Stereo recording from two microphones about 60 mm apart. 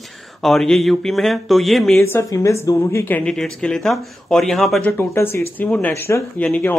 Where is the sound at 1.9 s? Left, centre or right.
Left.